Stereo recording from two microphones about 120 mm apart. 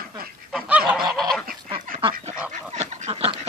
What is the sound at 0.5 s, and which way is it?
Goose, 10° right (ahead or behind).